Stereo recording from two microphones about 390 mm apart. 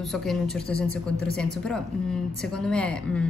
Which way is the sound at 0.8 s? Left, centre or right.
Right.